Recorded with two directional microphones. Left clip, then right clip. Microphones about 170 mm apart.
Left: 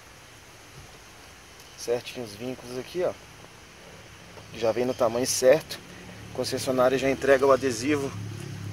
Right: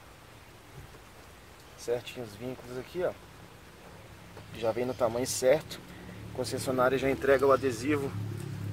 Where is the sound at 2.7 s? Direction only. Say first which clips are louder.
Left 4 dB; 40° left (ahead or behind).